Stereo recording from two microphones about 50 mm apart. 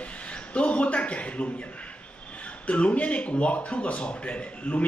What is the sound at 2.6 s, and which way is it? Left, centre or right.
Speech, left.